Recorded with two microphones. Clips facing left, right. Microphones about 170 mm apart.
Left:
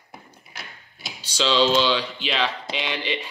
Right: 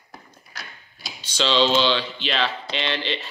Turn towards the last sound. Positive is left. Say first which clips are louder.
# right 1 dB
turn(degrees=15)  # may be behind; listen again after turning